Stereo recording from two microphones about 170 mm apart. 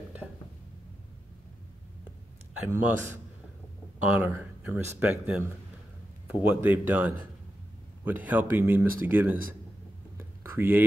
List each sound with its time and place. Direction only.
2.6 s speech: 10° right (ahead or behind)
4.1 s a man's voice: 10° right (ahead or behind)
8.3 s speech: 10° right (ahead or behind)
10.1 s a sound: 15° right (ahead or behind)